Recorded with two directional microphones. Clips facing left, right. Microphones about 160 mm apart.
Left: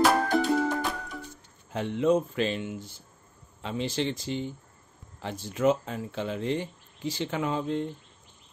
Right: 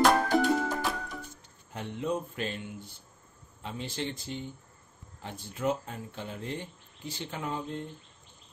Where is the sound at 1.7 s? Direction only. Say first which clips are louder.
Left 8 dB; 90° left.